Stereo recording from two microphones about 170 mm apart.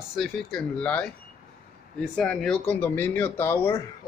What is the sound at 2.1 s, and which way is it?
Speech, 5° left (ahead or behind).